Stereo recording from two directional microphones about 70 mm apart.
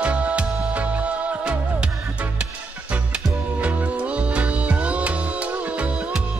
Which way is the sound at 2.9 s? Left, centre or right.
Centre.